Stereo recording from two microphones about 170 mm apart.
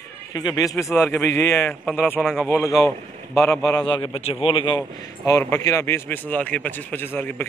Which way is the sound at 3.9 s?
35° left (ahead or behind).